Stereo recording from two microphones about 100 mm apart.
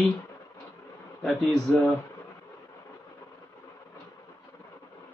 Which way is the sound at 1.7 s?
15° left (ahead or behind).